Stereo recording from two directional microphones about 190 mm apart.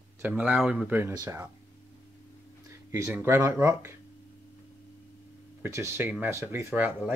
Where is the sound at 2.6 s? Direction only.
15° right (ahead or behind).